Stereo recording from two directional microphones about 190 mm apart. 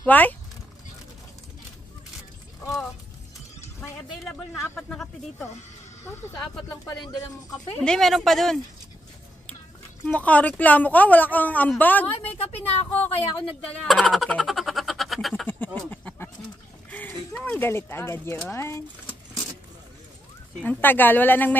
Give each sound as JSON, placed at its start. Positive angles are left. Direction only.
{"t": 0.0, "sound": "speech", "side_deg": 10}
{"t": 4.2, "sound": "a sound", "side_deg": 0}
{"t": 4.6, "sound": "speech", "side_deg": 10}
{"t": 6.0, "sound": "a woman's voice", "side_deg": 20}
{"t": 7.8, "sound": "speech", "side_deg": 0}
{"t": 10.0, "sound": "a woman's voice", "side_deg": 5}
{"t": 12.9, "sound": "speech", "side_deg": 30}
{"t": 13.7, "sound": "speech", "side_deg": 5}
{"t": 15.4, "sound": "a sound", "side_deg": 10}
{"t": 17.4, "sound": "a woman's voice", "side_deg": 10}
{"t": 20.6, "sound": "a woman's voice", "side_deg": 10}